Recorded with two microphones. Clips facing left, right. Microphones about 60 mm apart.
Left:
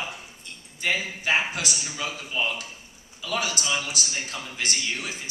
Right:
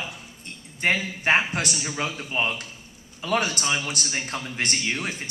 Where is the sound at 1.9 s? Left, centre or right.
Right.